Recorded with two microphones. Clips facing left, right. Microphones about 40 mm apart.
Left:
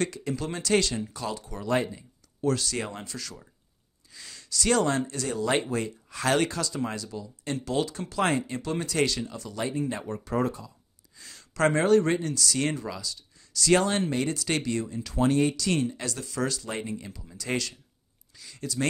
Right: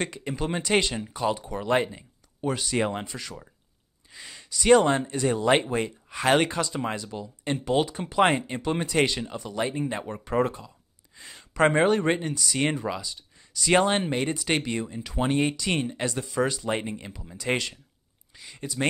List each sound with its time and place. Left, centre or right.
0.0 s speech: right
7.1 s speech: right
7.5 s speech: right